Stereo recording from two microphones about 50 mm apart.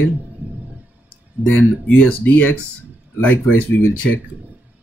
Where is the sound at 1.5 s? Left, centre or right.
Left.